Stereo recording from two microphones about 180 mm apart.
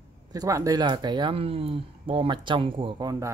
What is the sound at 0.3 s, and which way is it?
Speech, 20° right (ahead or behind).